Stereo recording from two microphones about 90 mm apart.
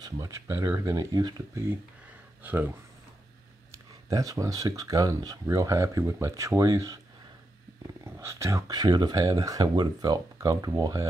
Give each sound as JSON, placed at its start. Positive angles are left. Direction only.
{"t": 0.0, "sound": "speech", "side_deg": -35}
{"t": 2.4, "sound": "speech", "side_deg": -20}
{"t": 3.7, "sound": "speech", "side_deg": -40}
{"t": 8.0, "sound": "speech", "side_deg": -30}